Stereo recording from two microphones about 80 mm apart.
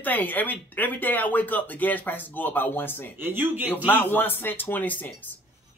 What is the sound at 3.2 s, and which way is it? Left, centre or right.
Speech, right.